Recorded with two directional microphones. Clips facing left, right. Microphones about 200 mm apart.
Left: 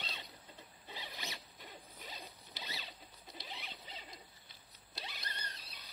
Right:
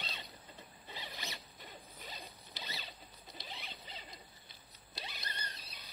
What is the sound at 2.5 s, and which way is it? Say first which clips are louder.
Zipper: right 1 dB; 5° left (ahead or behind).